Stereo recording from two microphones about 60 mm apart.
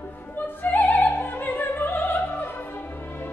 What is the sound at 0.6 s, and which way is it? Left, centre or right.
Opera, left.